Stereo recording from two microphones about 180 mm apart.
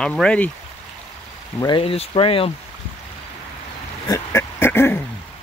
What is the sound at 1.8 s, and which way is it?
Speech, 30° left (ahead or behind).